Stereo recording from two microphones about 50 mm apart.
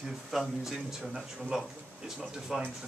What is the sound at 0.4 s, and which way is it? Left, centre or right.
Speech, centre.